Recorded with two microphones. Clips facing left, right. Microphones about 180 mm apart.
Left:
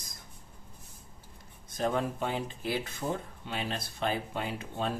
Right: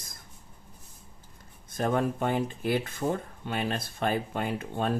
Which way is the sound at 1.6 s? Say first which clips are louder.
Right 3 dB; 50° right (ahead or behind).